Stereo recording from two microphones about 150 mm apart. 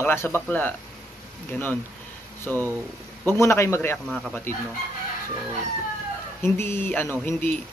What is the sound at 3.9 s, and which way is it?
Speech, 5° left (ahead or behind).